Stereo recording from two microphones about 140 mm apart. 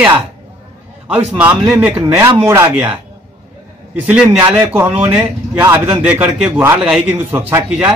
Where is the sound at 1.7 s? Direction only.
10° right (ahead or behind).